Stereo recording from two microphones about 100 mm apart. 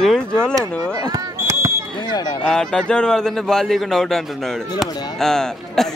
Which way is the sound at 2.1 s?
45° left (ahead or behind).